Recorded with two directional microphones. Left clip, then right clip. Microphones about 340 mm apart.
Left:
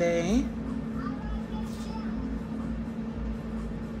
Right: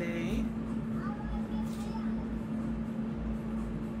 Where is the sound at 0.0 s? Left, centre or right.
Centre.